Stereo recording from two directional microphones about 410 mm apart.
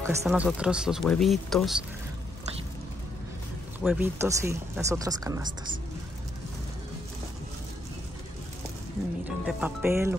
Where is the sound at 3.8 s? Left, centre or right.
Centre.